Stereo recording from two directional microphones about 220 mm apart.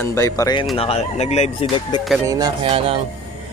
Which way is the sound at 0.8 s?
30° left (ahead or behind).